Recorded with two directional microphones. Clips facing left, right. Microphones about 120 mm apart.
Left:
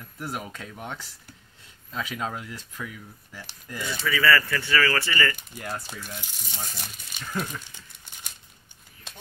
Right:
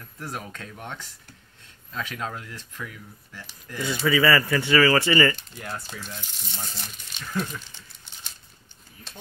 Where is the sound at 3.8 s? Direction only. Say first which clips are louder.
Right 3 dB; 20° right (ahead or behind).